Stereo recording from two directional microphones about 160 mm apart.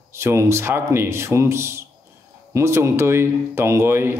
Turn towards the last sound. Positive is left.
turn(degrees=-15)  # may be behind; listen again after turning